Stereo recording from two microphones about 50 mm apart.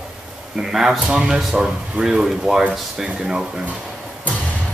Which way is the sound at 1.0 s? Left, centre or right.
Right.